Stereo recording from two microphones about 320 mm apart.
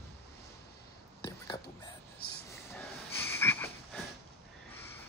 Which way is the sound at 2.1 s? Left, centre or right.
Left.